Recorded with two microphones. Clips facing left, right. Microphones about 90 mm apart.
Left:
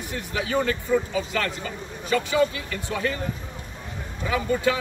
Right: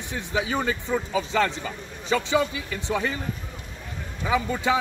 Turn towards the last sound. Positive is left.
turn(degrees=-15)  # may be behind; listen again after turning